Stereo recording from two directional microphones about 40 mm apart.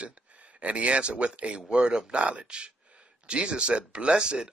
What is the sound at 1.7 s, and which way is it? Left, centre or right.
Speech, right.